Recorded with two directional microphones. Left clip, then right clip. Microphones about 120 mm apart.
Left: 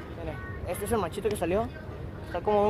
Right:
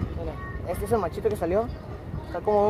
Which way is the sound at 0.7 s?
50° left (ahead or behind).